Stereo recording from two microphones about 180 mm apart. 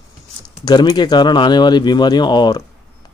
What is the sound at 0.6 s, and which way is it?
Speech, 25° left (ahead or behind).